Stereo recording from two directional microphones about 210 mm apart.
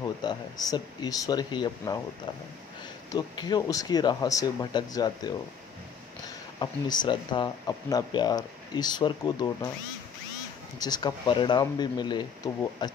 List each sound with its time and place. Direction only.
0.0 s speech: 20° left (ahead or behind)
3.1 s speech: 20° left (ahead or behind)
10.8 s speech: 20° left (ahead or behind)